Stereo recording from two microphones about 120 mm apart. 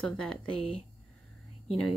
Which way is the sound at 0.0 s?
5° left (ahead or behind).